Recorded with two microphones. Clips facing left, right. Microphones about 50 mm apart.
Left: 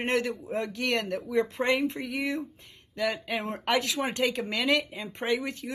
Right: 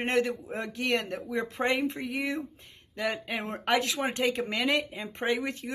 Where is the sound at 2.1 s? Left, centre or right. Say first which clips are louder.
Left 1 dB; right.